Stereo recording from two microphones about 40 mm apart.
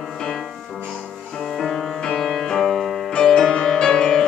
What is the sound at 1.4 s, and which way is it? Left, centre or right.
Music, centre.